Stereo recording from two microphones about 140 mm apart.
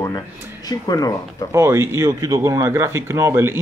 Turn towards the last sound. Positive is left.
turn(degrees=-20)  # may be behind; listen again after turning